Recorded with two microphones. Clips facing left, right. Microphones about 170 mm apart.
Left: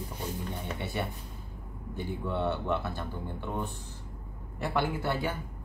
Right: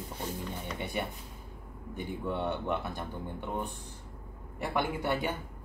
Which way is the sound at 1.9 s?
15° right (ahead or behind).